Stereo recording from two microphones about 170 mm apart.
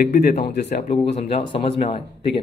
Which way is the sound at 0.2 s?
70° left (ahead or behind).